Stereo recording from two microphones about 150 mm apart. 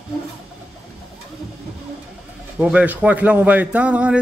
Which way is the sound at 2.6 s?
10° right (ahead or behind).